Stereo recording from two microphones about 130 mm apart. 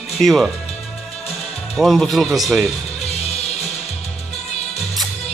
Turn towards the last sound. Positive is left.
turn(degrees=55)  # may be behind; listen again after turning